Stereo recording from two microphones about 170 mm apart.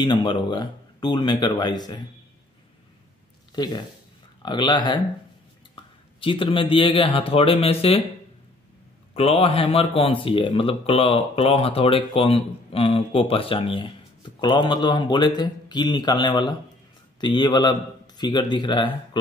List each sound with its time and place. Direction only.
0.0 s speech: 25° left (ahead or behind)
3.5 s speech: 25° left (ahead or behind)
9.1 s a man's voice: 35° left (ahead or behind)